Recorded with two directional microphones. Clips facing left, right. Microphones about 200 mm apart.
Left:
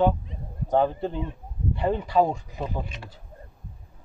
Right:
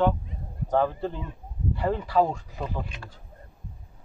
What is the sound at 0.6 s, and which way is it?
Speech, 20° left (ahead or behind).